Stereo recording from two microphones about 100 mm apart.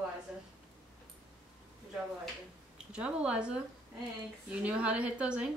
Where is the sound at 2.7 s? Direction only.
10° right (ahead or behind).